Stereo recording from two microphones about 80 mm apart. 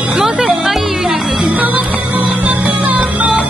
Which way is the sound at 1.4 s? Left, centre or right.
Right.